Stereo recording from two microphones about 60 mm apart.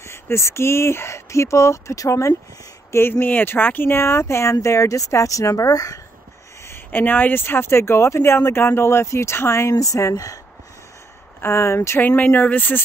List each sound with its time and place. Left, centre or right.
0.0 s speech: left
2.9 s speech: left
6.7 s speech: left
11.4 s speech: left
12.0 s speech: left